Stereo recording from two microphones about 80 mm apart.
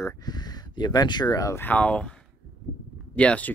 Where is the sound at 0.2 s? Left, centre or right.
Left.